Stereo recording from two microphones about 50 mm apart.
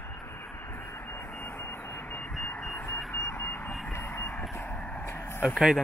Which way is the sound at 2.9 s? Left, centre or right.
Left.